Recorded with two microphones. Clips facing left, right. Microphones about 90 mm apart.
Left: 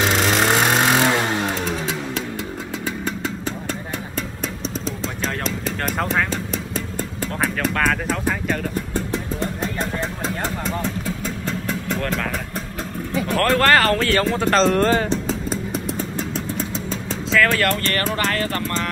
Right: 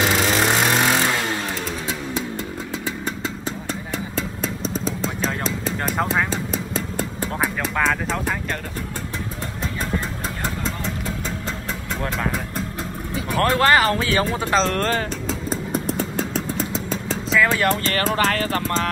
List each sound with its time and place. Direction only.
0.0 s vehicle: 5° right (ahead or behind)
0.7 s vehicle: 15° left (ahead or behind)
7.6 s music: centre (ahead or behind)
13.3 s vehicle: 20° right (ahead or behind)
13.9 s speech: 15° right (ahead or behind); by 14.9 s 5° left (ahead or behind)
17.5 s speech: 20° right (ahead or behind)
18.0 s music: 35° right (ahead or behind)